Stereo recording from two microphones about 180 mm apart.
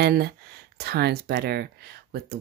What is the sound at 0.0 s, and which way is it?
Speech, 60° right (ahead or behind).